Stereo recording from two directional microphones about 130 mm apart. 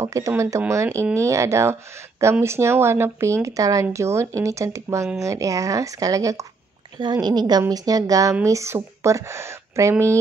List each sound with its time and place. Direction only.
0.0 s a woman's voice: 25° right (ahead or behind)